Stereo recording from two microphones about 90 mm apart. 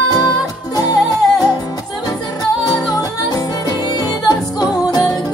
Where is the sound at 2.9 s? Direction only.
45° left (ahead or behind).